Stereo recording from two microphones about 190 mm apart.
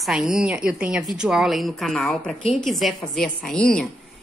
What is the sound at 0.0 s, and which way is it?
A woman's voice, centre (ahead or behind).